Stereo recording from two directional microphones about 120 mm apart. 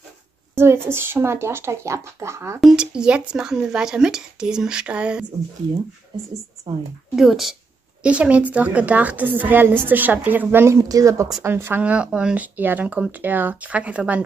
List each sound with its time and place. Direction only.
0.9 s speech: 20° right (ahead or behind)
2.6 s a woman's voice: 5° right (ahead or behind)
7.2 s a woman's voice: centre (ahead or behind)